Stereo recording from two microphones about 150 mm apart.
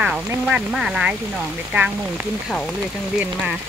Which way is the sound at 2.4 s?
5° left (ahead or behind).